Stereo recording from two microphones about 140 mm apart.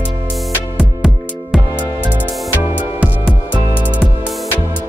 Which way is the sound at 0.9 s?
10° right (ahead or behind).